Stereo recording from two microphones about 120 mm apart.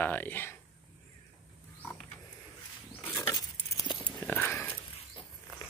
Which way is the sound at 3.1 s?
35° left (ahead or behind).